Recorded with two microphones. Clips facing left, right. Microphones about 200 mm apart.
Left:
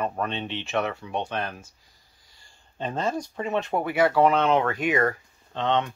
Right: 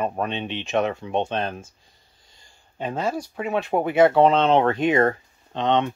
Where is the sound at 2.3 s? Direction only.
10° right (ahead or behind).